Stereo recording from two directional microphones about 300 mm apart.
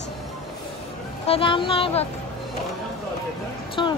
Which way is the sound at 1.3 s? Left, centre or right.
Centre.